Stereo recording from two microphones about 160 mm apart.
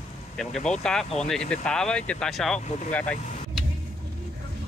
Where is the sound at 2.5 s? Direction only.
45° left (ahead or behind).